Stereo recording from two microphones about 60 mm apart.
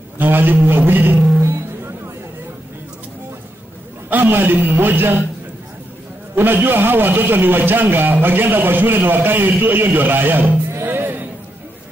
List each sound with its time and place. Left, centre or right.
0.2 s a man's voice: right
4.1 s a man's voice: right
6.3 s a man's voice: right
10.7 s music: right